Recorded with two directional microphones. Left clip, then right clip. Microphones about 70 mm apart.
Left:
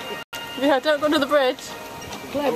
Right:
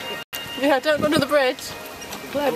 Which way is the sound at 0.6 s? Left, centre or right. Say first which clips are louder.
Even; centre.